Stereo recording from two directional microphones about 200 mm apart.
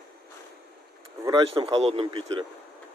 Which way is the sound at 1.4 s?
30° right (ahead or behind).